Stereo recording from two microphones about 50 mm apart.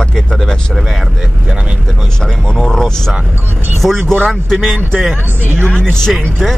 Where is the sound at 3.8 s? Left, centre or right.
Centre.